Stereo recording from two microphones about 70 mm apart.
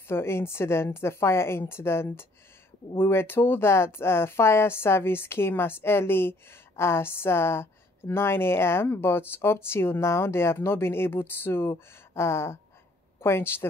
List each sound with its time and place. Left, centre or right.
0.1 s a woman's voice: left